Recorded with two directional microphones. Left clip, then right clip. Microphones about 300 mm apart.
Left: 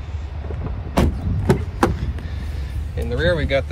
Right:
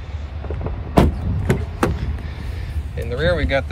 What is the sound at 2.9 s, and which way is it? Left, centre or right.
Vehicle, centre.